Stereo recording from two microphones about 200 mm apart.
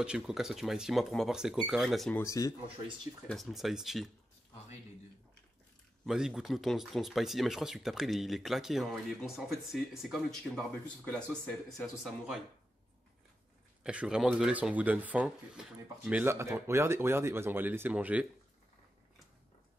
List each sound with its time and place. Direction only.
0.0 s speech: 5° right (ahead or behind)
2.2 s speech: 15° left (ahead or behind)
3.3 s speech: centre (ahead or behind)
6.0 s speech: 5° right (ahead or behind)
13.8 s speech: 5° right (ahead or behind)